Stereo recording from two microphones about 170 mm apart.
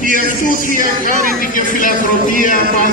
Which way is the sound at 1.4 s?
55° left (ahead or behind).